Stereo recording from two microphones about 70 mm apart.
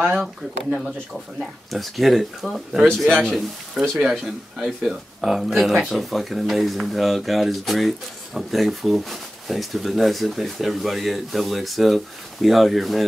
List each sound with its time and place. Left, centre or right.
0.0 s speech: centre
1.4 s speech: centre
4.0 s speech: centre